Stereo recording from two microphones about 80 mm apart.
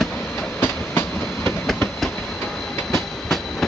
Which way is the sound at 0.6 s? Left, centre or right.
Left.